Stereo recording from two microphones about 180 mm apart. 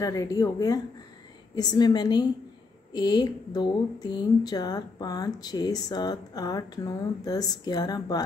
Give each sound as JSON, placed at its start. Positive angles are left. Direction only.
{"t": 0.0, "sound": "speech", "side_deg": 20}